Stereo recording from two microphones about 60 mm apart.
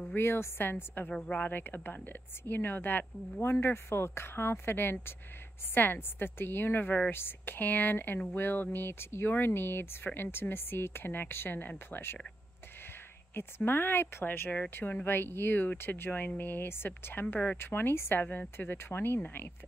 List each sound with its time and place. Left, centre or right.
0.0 s speech: left
13.7 s speech: left
18.2 s speech: left